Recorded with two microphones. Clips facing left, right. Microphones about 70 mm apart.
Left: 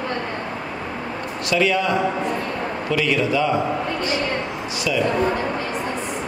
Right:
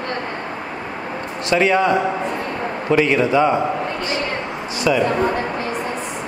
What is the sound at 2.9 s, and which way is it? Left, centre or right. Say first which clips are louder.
Speech: right 5 dB; right.